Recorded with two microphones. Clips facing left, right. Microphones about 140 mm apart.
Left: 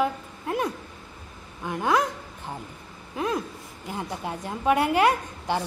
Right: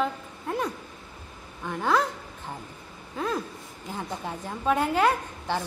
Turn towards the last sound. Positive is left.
turn(degrees=10)  # may be behind; listen again after turning